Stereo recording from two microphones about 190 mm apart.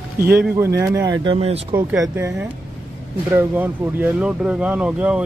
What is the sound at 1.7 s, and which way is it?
Speech, 15° right (ahead or behind).